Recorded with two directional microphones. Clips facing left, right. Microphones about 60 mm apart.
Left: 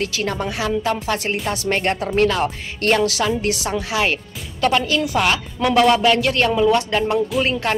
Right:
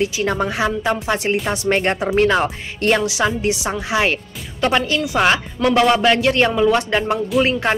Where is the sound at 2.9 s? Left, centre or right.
Centre.